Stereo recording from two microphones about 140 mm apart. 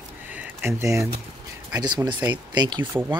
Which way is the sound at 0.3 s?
15° right (ahead or behind).